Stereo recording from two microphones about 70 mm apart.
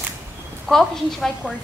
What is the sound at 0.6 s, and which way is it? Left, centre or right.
Speech, centre.